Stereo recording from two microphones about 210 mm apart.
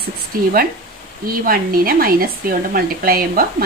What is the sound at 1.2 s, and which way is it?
Speech, 45° right (ahead or behind).